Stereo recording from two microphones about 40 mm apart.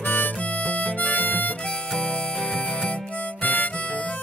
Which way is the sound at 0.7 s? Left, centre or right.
Left.